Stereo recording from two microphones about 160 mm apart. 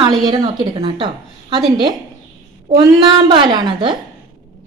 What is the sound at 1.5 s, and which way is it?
A woman's voice, 30° right (ahead or behind).